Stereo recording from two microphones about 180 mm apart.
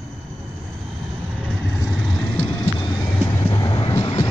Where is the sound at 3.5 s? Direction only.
20° left (ahead or behind).